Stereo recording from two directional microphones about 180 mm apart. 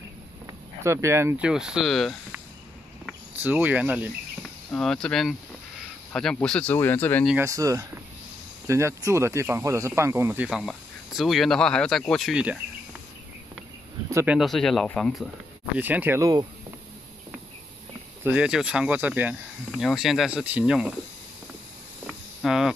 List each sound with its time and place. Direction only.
0.8 s speech: 15° right (ahead or behind)
1.5 s speech: 5° right (ahead or behind)
3.4 s speech: 10° right (ahead or behind)
4.4 s speech: centre (ahead or behind)
7.4 s speech: 20° right (ahead or behind)
14.1 s speech: 10° right (ahead or behind)
15.8 s speech: 10° right (ahead or behind)
18.2 s speech: 5° right (ahead or behind)
22.0 s a sound: centre (ahead or behind)